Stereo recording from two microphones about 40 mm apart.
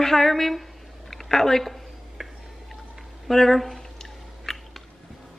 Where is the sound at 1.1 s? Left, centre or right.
Centre.